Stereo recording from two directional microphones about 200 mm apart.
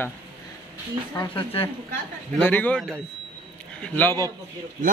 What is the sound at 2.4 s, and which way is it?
A man's voice, 10° left (ahead or behind).